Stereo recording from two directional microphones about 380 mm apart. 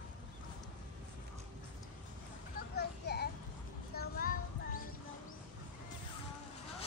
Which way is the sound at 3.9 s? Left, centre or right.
Left.